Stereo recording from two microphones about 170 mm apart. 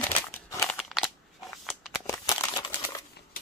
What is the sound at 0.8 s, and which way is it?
Scissors, centre (ahead or behind).